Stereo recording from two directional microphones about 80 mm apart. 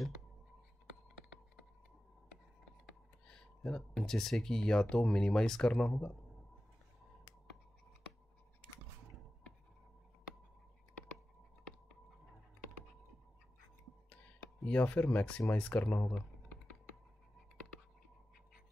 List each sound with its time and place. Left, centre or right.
2.9 s speech: centre
14.7 s speech: left